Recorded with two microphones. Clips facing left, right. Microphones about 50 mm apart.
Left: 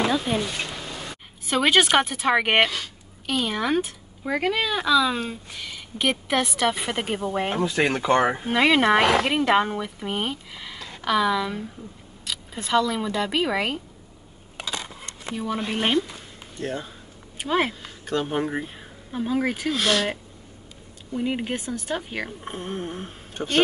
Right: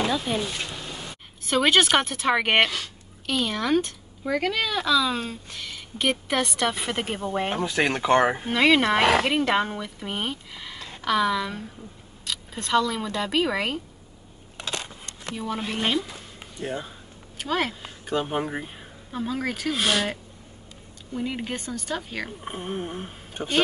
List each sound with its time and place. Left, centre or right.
0.1 s a woman's voice: centre
4.3 s a woman's voice: centre
8.5 s a woman's voice: centre
15.3 s speech: centre
15.7 s a woman's voice: centre
16.5 s speech: centre
17.4 s speech: left
17.8 s speech: centre
18.4 s a woman's voice: centre
19.7 s speech: centre
21.1 s a woman's voice: centre
22.4 s speech: centre